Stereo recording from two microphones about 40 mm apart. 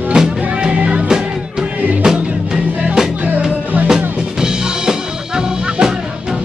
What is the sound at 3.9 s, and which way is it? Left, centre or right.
Music, centre.